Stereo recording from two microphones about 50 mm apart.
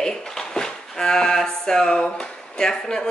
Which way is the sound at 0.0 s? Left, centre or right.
Centre.